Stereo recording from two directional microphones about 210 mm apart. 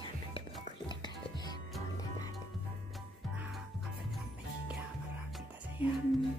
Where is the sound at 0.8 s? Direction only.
20° left (ahead or behind).